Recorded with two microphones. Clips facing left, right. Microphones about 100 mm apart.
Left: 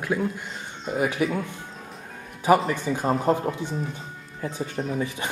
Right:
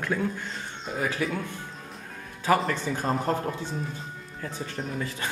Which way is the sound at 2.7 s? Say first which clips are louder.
Left 3 dB; 15° left (ahead or behind).